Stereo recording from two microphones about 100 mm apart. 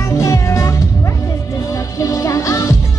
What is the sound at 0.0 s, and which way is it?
Music, 30° left (ahead or behind).